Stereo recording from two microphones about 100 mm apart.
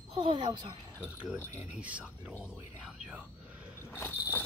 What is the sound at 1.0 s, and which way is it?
Speech, 15° right (ahead or behind).